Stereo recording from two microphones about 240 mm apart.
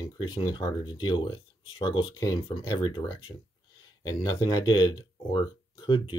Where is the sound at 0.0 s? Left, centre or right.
Centre.